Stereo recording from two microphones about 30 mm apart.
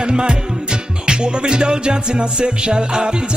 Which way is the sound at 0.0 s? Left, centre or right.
Right.